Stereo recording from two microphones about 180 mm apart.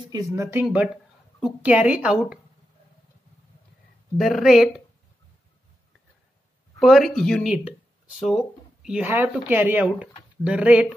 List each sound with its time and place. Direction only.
0.1 s speech: 15° right (ahead or behind)
4.2 s speech: centre (ahead or behind)
6.8 s speech: centre (ahead or behind)